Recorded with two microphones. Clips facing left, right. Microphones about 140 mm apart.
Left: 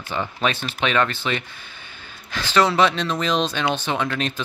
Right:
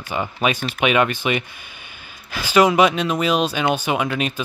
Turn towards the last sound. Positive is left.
turn(degrees=-10)  # may be behind; listen again after turning